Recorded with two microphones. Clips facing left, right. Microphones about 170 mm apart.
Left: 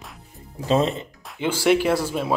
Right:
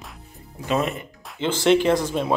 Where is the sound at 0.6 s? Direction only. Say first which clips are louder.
Left 3 dB; 25° left (ahead or behind).